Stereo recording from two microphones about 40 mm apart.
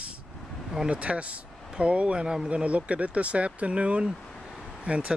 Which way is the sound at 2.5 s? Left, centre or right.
Right.